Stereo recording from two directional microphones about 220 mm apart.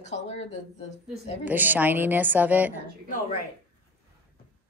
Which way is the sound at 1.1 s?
10° right (ahead or behind).